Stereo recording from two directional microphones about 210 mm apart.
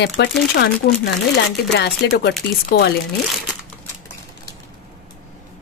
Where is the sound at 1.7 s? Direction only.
50° left (ahead or behind).